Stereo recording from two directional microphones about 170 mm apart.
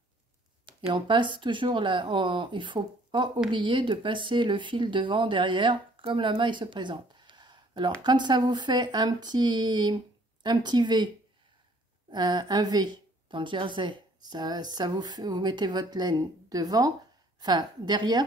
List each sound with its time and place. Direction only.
0.7 s a woman's voice: 30° right (ahead or behind)
12.1 s a woman's voice: 25° right (ahead or behind)